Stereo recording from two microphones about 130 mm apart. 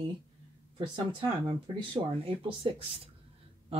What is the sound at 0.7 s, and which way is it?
Speech, 40° right (ahead or behind).